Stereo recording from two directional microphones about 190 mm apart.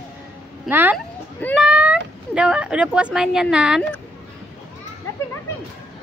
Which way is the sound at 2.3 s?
5° right (ahead or behind).